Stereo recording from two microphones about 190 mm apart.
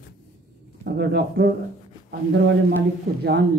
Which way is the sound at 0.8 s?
60° right (ahead or behind).